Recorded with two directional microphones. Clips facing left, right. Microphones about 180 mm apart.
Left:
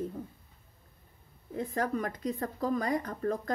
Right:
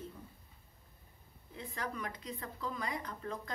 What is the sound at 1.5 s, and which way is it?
Speech, 45° left (ahead or behind).